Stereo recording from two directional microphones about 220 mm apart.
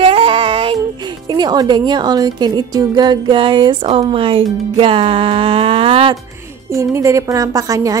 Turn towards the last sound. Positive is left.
turn(degrees=-15)  # may be behind; listen again after turning